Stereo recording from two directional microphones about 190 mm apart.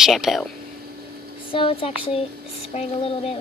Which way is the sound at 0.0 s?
Centre (ahead or behind).